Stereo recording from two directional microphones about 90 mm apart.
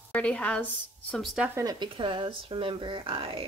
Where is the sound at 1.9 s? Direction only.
65° right (ahead or behind); by 3.4 s 90° right.